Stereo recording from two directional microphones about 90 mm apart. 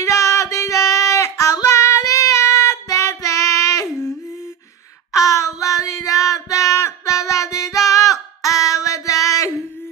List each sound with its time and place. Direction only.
0.0 s female singing: 35° left (ahead or behind)
5.1 s child singing: 35° left (ahead or behind)
5.6 s music: 35° left (ahead or behind)